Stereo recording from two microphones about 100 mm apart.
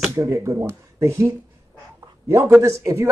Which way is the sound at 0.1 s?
30° right (ahead or behind).